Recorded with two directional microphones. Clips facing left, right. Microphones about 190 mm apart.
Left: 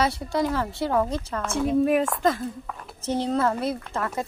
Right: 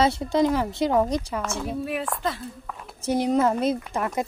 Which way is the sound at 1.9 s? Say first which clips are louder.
Left 6 dB; 45° left (ahead or behind).